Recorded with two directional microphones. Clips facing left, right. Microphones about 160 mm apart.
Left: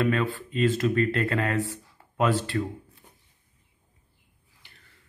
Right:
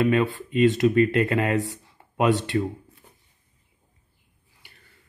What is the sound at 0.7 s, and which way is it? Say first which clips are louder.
Speech: right 5 dB; 10° right (ahead or behind).